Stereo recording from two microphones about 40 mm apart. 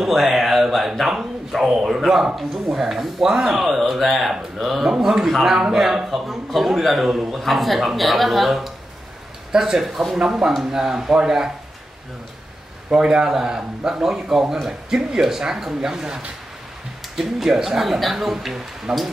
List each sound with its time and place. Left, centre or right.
0.1 s a sound: centre
1.9 s a man's voice: centre
9.5 s a man's voice: centre
12.9 s a man's voice: right
13.2 s a man's voice: centre